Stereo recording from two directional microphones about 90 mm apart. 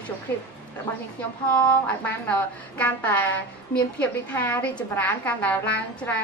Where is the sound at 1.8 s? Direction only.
15° left (ahead or behind).